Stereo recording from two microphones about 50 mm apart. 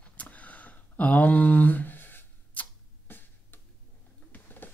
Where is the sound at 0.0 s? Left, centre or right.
Left.